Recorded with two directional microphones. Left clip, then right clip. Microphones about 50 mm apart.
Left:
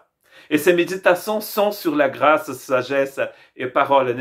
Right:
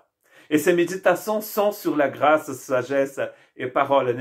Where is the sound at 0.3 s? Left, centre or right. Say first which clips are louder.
Left 3 dB; left.